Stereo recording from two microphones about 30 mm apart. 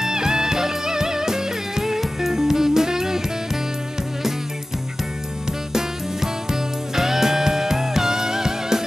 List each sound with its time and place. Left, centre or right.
0.0 s music: right
5.7 s music: centre